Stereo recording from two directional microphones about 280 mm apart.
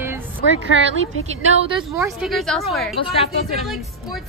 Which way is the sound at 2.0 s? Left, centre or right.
Centre.